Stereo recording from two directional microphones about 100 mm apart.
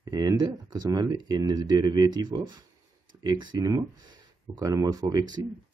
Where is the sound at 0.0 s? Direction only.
40° right (ahead or behind).